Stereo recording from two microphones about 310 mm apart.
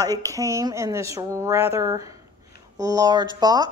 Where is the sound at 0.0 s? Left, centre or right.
Centre.